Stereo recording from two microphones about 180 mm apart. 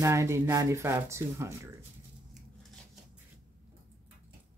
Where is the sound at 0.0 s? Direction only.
15° right (ahead or behind).